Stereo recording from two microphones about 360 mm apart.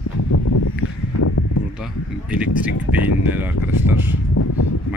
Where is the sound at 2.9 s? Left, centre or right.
Left.